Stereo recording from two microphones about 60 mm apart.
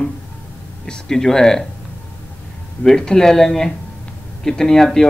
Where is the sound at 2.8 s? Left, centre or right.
Centre.